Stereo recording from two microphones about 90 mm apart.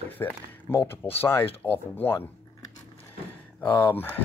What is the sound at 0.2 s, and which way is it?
Speech, 25° left (ahead or behind).